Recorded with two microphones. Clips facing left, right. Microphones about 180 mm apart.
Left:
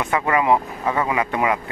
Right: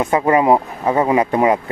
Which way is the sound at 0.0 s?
35° right (ahead or behind).